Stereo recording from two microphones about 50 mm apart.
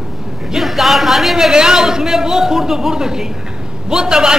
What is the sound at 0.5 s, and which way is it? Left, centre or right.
A woman's voice, centre.